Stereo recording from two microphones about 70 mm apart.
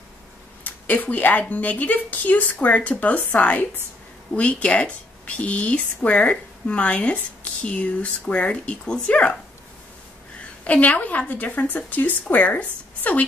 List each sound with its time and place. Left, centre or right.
0.7 s a woman's voice: left
10.6 s a woman's voice: left